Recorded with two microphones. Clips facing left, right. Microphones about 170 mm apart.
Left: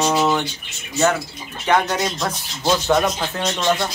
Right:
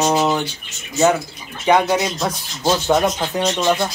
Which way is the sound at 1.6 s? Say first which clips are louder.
Right 3 dB; 10° right (ahead or behind).